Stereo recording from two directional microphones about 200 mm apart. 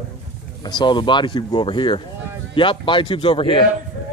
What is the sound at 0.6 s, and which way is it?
Speech, 20° left (ahead or behind).